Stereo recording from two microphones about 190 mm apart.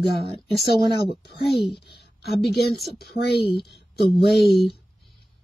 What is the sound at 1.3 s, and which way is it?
Speech, 60° left (ahead or behind).